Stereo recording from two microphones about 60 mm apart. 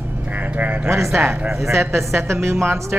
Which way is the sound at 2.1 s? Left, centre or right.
Right.